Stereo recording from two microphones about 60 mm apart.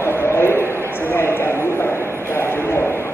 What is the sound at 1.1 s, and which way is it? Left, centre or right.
Clip-clop, left.